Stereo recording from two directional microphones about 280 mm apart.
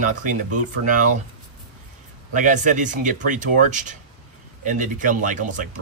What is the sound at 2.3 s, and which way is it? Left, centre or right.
Speech, right.